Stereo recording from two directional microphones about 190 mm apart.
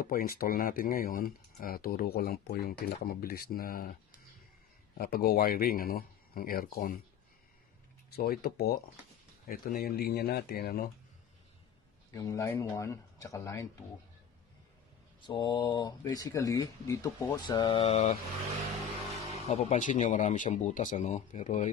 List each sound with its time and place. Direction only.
0.0 s speech: 50° left (ahead or behind)
4.9 s speech: 55° left (ahead or behind)
8.2 s speech: 55° left (ahead or behind)
12.1 s speech: 15° left (ahead or behind)
15.2 s speech: 25° left (ahead or behind)
19.5 s speech: 40° left (ahead or behind)